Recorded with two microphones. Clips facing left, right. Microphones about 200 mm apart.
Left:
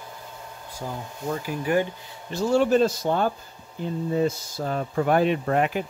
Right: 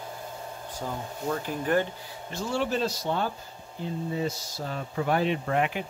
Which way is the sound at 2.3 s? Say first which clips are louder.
Left 9 dB; 45° left (ahead or behind).